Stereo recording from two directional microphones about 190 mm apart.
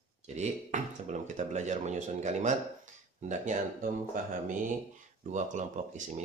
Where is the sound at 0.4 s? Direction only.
40° right (ahead or behind).